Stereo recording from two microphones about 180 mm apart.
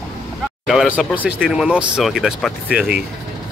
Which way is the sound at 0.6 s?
5° right (ahead or behind).